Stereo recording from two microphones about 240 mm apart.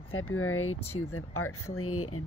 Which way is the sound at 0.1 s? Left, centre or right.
Left.